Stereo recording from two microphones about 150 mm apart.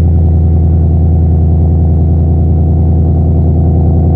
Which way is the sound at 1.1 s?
15° right (ahead or behind).